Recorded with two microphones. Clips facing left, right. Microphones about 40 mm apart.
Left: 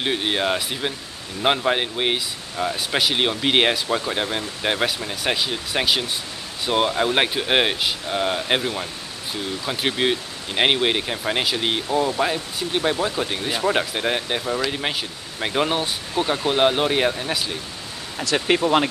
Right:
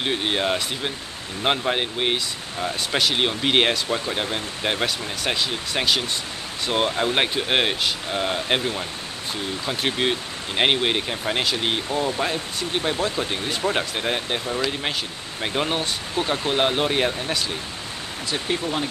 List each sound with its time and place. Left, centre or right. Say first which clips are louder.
0.0 s speech: left 1 dB; centre
18.2 s speech: left 6 dB; left